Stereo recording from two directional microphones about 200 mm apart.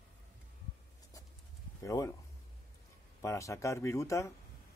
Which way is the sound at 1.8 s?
15° left (ahead or behind).